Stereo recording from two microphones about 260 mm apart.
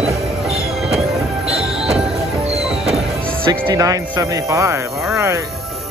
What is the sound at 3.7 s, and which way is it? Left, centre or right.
Speech, centre.